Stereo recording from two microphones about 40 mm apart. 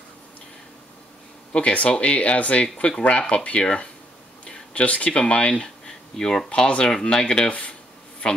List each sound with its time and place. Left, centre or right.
1.5 s speech: left
5.5 s speech: centre